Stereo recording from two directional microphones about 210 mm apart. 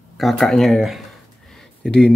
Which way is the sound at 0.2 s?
Centre (ahead or behind).